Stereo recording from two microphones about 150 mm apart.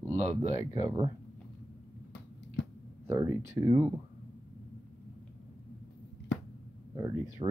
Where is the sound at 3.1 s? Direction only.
15° right (ahead or behind).